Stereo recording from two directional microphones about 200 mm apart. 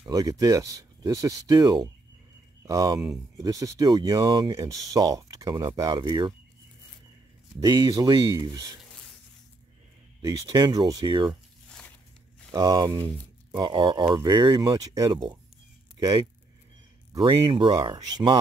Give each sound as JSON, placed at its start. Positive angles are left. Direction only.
{"t": 0.0, "sound": "speech", "side_deg": -15}
{"t": 7.6, "sound": "speech", "side_deg": -20}
{"t": 10.2, "sound": "speech", "side_deg": -20}
{"t": 11.2, "sound": "a sound", "side_deg": 5}
{"t": 12.4, "sound": "speech", "side_deg": -20}